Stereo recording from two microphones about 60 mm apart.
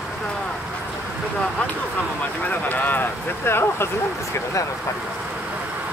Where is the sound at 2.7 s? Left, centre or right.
Left.